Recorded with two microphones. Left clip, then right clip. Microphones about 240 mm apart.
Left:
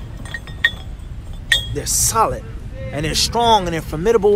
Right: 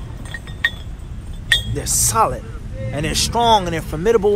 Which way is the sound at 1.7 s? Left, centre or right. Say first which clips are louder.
Even; right.